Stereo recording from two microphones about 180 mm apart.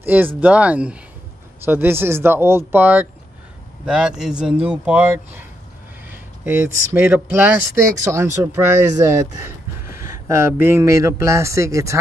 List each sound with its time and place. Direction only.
0.0 s speech: 10° right (ahead or behind)
6.4 s speech: 15° right (ahead or behind)